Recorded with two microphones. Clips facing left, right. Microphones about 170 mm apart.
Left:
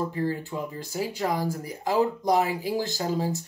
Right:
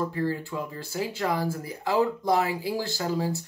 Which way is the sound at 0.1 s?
15° left (ahead or behind).